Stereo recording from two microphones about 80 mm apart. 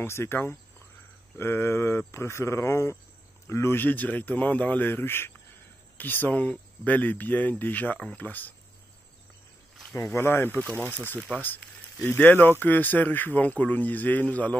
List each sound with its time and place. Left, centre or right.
0.0 s speech: left
10.1 s speech: left